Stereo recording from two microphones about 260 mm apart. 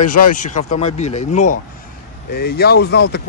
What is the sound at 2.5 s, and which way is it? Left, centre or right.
Speech, left.